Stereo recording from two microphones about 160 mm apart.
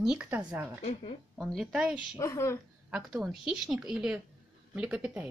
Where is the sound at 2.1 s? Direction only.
20° left (ahead or behind).